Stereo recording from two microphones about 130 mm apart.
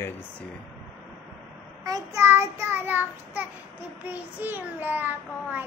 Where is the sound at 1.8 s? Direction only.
25° right (ahead or behind).